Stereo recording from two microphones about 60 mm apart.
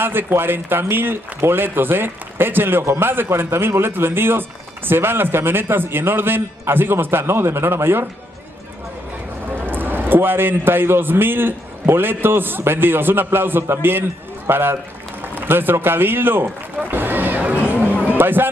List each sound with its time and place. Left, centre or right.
0.0 s speech: right
9.5 s a man's voice: right
16.9 s a sound: right